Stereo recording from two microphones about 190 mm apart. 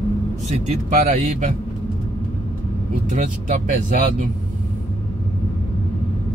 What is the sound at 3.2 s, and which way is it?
Speech, 40° right (ahead or behind).